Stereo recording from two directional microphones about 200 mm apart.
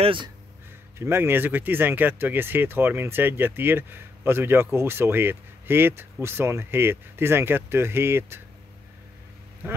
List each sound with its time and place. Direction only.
0.0 s speech: 25° right (ahead or behind)
0.9 s speech: 10° right (ahead or behind)